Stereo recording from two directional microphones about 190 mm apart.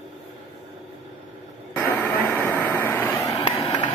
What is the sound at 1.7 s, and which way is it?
Vehicle, 10° left (ahead or behind).